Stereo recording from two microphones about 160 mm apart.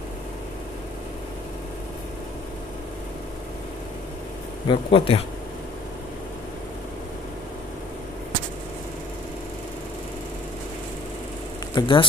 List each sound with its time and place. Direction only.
4.6 s speech: 35° left (ahead or behind)
11.7 s speech: 30° left (ahead or behind)